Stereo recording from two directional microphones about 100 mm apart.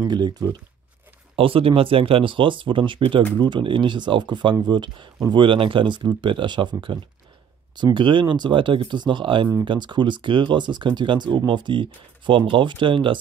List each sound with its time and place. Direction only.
0.0 s speech: 45° right (ahead or behind)
1.3 s speech: 70° right (ahead or behind)